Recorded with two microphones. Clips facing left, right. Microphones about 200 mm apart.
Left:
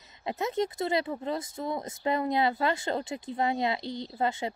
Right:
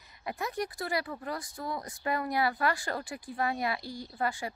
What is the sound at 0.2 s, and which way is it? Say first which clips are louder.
Speech: left 5 dB; 25° left (ahead or behind).